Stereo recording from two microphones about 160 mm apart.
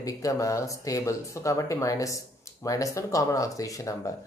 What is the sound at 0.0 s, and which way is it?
Speech, 20° left (ahead or behind).